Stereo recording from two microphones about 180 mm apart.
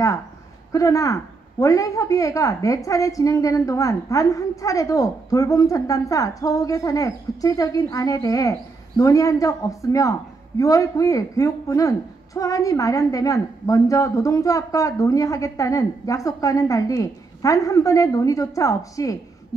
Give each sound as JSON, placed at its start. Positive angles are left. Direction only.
{"t": 0.7, "sound": "a woman's voice", "side_deg": 20}